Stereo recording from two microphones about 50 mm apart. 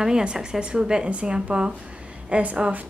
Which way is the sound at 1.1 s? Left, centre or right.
Right.